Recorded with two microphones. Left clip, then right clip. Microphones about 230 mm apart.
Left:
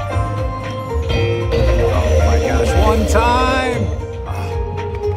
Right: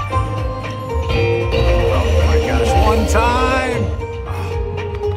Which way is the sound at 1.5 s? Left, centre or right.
Left.